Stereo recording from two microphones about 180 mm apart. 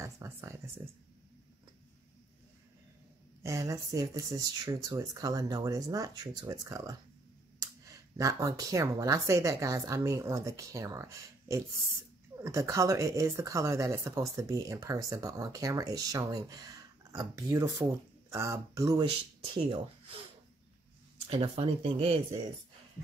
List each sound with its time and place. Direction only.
0.0 s a sound: 15° right (ahead or behind)
3.4 s speech: 15° right (ahead or behind)
21.3 s speech: 30° right (ahead or behind)